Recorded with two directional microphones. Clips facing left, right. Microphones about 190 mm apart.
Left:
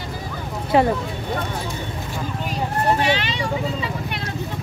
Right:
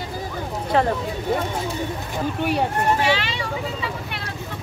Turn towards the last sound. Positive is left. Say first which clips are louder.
# even
turn(degrees=20)  # may be behind; listen again after turning